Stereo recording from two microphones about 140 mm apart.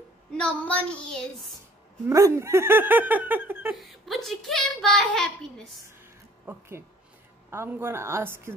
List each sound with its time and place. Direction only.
0.4 s child singing: 10° left (ahead or behind)
2.0 s speech: 20° right (ahead or behind)
3.7 s speech: centre (ahead or behind)
6.5 s speech: 15° right (ahead or behind)